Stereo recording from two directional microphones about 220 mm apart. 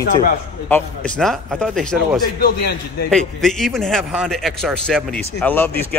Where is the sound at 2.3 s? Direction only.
45° left (ahead or behind).